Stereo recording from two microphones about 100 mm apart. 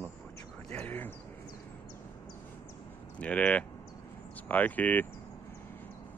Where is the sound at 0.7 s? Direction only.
20° left (ahead or behind).